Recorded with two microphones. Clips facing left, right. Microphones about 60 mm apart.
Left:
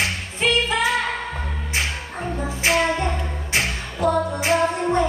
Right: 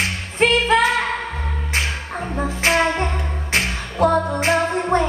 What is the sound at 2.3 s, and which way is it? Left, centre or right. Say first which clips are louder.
Music: right 2 dB; right.